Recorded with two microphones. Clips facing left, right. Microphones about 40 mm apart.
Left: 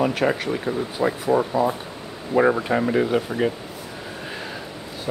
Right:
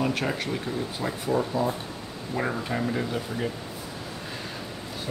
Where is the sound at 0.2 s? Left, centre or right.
Left.